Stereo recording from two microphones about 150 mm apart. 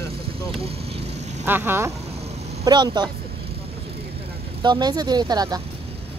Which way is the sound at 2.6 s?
30° right (ahead or behind).